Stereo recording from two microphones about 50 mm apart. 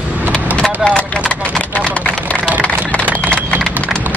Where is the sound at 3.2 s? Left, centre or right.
Left.